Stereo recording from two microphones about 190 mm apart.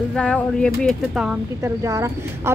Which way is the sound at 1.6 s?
15° right (ahead or behind).